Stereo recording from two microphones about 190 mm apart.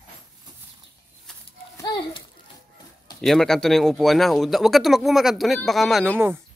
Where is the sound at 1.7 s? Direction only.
20° left (ahead or behind).